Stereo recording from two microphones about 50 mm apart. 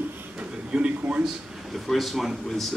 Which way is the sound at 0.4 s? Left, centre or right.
Right.